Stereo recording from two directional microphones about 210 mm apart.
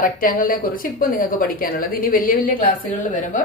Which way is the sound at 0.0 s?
40° left (ahead or behind).